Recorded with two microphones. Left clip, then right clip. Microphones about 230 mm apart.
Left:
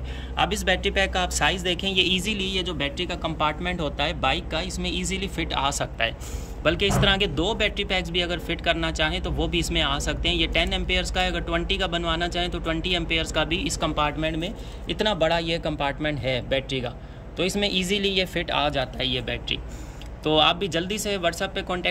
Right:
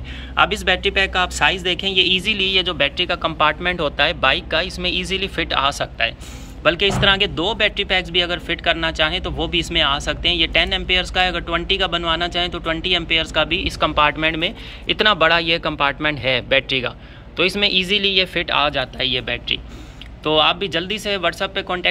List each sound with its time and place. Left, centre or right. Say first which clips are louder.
0.4 s speech: right 6 dB; centre